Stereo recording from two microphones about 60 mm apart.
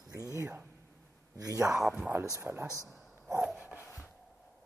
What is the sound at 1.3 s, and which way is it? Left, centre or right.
Speech, right.